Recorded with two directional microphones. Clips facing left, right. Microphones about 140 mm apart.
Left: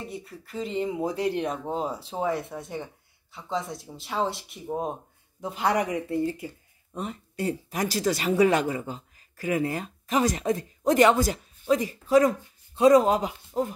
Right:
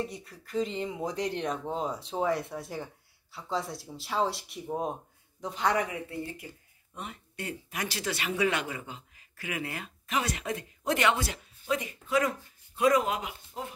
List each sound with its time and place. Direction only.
0.0 s speech: 5° left (ahead or behind)
6.9 s a woman's voice: 40° left (ahead or behind)